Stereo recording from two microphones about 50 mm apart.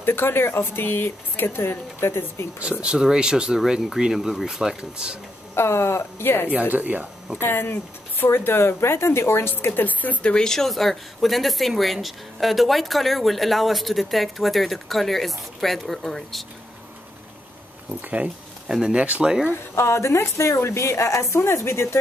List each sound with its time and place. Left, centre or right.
0.0 s speech: left
2.8 s speech: centre
5.5 s speech: left
6.5 s speech: right
7.3 s speech: left
9.8 s speech: left
10.2 s speech: centre
18.0 s speech: right
19.7 s a woman's voice: left